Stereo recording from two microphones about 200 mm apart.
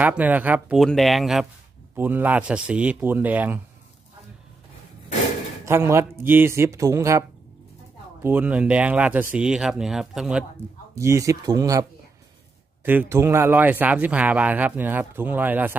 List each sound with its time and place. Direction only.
0.0 s speech: 10° right (ahead or behind)
5.7 s speech: 15° right (ahead or behind)
11.0 s speech: 15° right (ahead or behind)
12.8 s speech: 10° right (ahead or behind)